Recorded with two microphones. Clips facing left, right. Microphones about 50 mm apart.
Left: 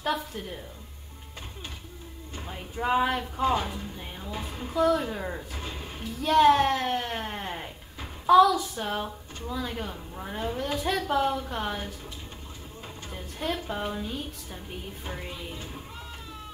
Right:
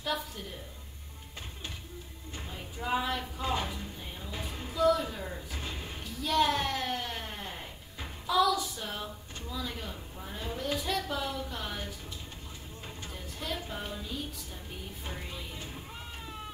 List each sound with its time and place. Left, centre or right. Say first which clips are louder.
2.5 s speech: left 6 dB; left
4.3 s music: left 5 dB; centre
4.7 s a woman's voice: left 3 dB; left
5.5 s speech: left 2 dB; centre
6.2 s speech: left 8 dB; left
8.3 s a woman's voice: left 9 dB; left
8.8 s a woman's voice: left 7 dB; left
13.1 s a woman's voice: left 7 dB; left
15.2 s music: left 4 dB; left